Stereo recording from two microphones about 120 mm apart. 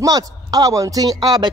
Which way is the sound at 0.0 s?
30° right (ahead or behind).